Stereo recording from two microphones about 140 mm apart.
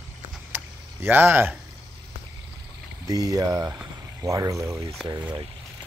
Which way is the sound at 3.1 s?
25° right (ahead or behind).